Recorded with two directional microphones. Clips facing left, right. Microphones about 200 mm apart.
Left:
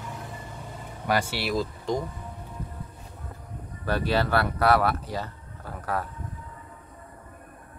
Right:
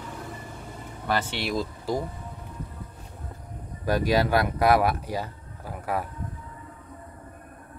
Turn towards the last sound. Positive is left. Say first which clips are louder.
# right 1 dB
turn(degrees=-10)  # may be behind; listen again after turning